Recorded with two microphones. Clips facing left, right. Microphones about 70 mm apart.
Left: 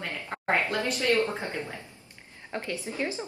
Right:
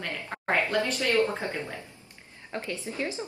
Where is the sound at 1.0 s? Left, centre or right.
Right.